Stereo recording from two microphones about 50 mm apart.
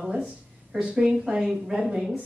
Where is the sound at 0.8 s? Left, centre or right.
Centre.